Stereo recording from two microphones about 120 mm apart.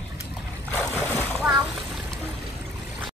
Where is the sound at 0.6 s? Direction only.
15° left (ahead or behind).